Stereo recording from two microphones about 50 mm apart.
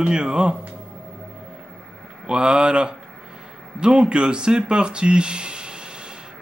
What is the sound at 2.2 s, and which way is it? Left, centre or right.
Speech, centre.